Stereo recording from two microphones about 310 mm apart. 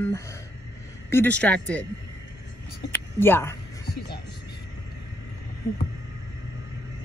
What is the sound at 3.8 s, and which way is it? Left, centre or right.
Speech, left.